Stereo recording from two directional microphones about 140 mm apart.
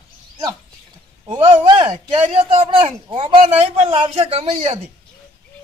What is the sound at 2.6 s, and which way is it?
A man's voice, 35° right (ahead or behind).